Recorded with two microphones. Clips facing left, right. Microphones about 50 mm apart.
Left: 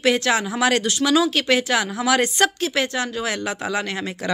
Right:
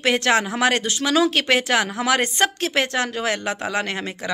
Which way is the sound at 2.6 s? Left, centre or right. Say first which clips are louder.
Right 1 dB; right.